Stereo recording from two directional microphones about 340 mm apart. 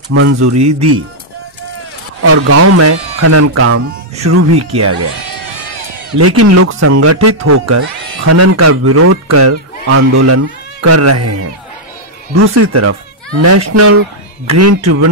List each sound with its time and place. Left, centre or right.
0.1 s speech: right
2.2 s speech: right
6.1 s speech: right